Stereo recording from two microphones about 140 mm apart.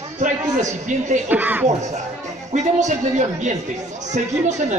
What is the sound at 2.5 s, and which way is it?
A man's voice, 60° right (ahead or behind).